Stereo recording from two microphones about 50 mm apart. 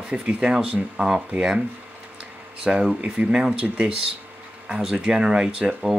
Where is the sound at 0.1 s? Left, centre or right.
Centre.